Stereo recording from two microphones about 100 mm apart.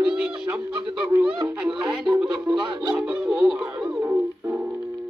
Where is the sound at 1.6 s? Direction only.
Centre (ahead or behind).